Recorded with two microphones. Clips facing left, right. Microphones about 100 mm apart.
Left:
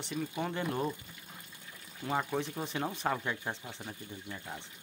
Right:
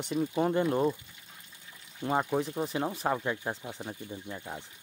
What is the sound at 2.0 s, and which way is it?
Speech, 20° right (ahead or behind).